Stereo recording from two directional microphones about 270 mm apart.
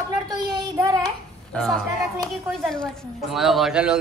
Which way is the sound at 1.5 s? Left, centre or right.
Centre.